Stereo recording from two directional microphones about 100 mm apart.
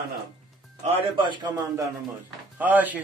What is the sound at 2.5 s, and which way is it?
Speech, 15° right (ahead or behind).